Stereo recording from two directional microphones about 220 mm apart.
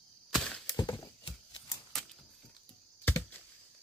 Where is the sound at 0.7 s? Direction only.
20° left (ahead or behind).